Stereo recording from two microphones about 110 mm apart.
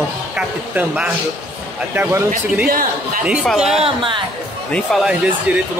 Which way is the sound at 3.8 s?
50° right (ahead or behind).